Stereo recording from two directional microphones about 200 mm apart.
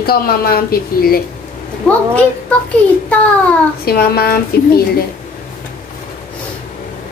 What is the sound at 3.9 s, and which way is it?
Speech, 50° left (ahead or behind).